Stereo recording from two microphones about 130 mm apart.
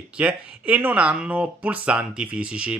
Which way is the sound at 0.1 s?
10° right (ahead or behind).